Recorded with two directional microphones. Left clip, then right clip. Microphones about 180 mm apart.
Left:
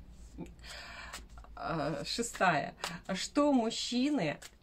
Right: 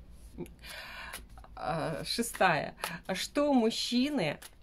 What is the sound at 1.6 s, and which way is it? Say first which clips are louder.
Speech: right 1 dB; 40° right (ahead or behind).